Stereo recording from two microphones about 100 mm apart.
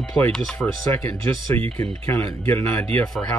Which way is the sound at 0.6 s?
25° left (ahead or behind).